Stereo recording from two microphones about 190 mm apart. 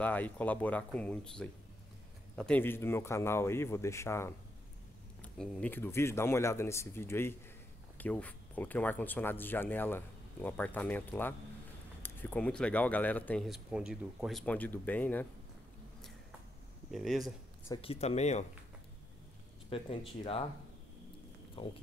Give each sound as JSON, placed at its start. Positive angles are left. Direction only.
{"t": 0.0, "sound": "speech", "side_deg": 10}
{"t": 16.9, "sound": "speech", "side_deg": 0}
{"t": 17.8, "sound": "speech", "side_deg": 35}
{"t": 19.7, "sound": "speech", "side_deg": 30}
{"t": 21.6, "sound": "speech", "side_deg": 25}